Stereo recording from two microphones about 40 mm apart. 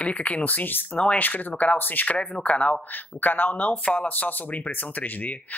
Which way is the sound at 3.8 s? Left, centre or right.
Left.